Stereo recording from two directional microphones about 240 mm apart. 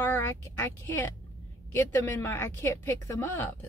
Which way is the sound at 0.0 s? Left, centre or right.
Centre.